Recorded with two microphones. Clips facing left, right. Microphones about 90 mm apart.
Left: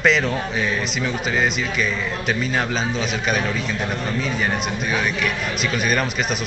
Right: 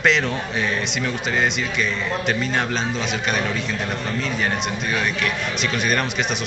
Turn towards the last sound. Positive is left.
turn(degrees=5)  # may be behind; listen again after turning